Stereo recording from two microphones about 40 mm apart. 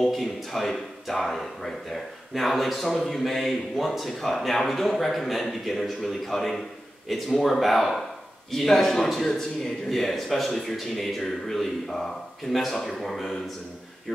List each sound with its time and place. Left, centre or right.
0.0 s a man's voice: centre